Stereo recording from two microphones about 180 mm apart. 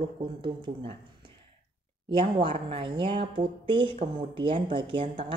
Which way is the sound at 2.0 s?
30° right (ahead or behind).